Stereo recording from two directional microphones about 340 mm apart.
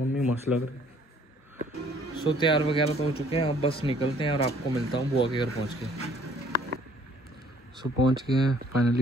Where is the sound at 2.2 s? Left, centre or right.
Centre.